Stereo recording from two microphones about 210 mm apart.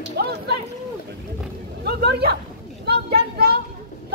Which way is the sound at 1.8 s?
50° right (ahead or behind).